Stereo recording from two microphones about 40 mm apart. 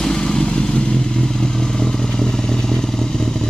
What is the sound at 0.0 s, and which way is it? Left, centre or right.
Vehicle, centre.